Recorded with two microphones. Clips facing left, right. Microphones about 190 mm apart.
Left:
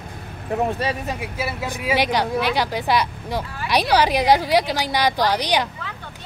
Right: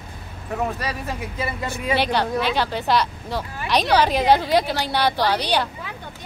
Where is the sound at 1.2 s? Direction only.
10° left (ahead or behind).